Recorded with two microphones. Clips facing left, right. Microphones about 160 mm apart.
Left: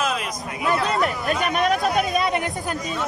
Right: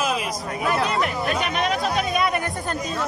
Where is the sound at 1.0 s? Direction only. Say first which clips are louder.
Left 1 dB; 45° left (ahead or behind).